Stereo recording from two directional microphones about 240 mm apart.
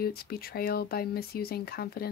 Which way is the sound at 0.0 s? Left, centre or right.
Left.